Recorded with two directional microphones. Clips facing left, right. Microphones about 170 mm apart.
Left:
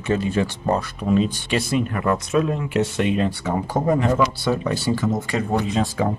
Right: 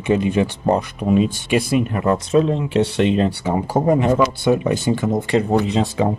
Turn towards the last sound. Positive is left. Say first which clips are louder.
# right 3 dB
turn(degrees=-20)  # may be behind; listen again after turning